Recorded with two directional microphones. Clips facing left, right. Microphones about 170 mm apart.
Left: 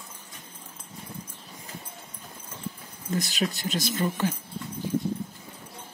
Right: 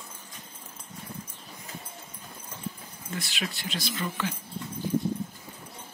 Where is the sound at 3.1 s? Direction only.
40° left (ahead or behind).